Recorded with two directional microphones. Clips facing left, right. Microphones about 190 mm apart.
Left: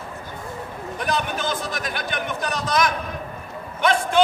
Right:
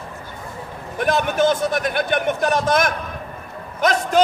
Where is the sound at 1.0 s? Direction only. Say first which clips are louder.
Right 8 dB; 55° right (ahead or behind).